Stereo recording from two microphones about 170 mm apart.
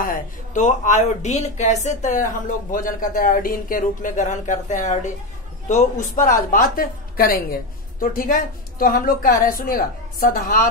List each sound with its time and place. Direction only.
0.0 s speech: 50° left (ahead or behind)
6.1 s a woman's voice: 50° left (ahead or behind)